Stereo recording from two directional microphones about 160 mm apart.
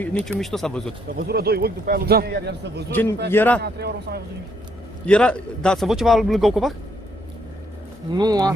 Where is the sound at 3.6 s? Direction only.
90° right.